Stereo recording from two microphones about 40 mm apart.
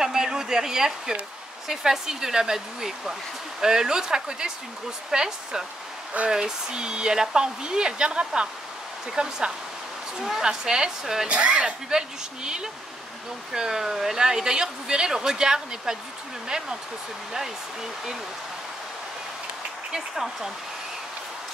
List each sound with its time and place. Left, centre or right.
0.0 s a sound: centre
1.7 s speech: centre
11.2 s speech: right
13.5 s speech: centre
19.9 s speech: centre